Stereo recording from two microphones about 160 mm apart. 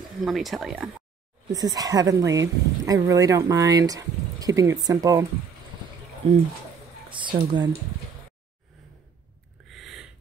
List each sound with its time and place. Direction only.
0.2 s speech: centre (ahead or behind)
1.5 s speech: 25° right (ahead or behind)
7.1 s speech: 30° right (ahead or behind)
9.7 s a sound: centre (ahead or behind)